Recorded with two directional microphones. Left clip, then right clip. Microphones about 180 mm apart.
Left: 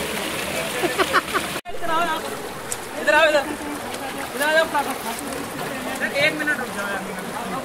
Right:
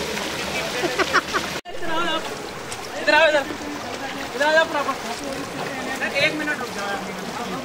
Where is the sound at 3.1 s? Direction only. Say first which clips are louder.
Even; 40° left (ahead or behind).